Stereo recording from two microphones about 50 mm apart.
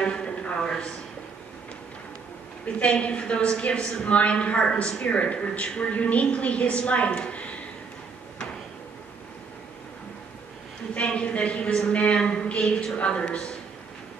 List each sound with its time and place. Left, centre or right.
0.0 s a sound: centre
0.6 s a man's voice: centre
2.6 s a woman's voice: left
11.0 s a woman's voice: left